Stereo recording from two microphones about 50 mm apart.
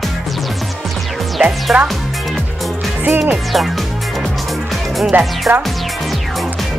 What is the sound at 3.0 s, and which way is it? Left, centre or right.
Speech, right.